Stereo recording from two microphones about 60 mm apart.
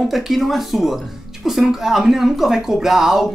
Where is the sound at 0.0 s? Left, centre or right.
Centre.